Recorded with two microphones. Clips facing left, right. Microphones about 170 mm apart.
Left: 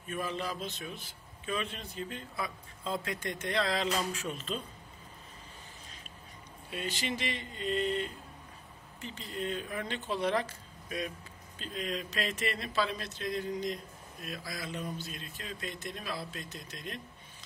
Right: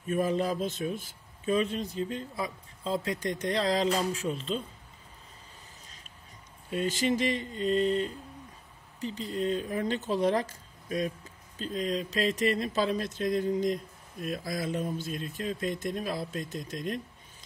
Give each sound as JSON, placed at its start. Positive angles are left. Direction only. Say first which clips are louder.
{"t": 0.1, "sound": "speech", "louder": "right 8 dB", "side_deg": -45}
{"t": 6.7, "sound": "speech", "louder": "right 8 dB", "side_deg": -45}